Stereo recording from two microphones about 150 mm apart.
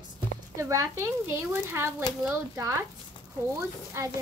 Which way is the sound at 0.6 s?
20° right (ahead or behind).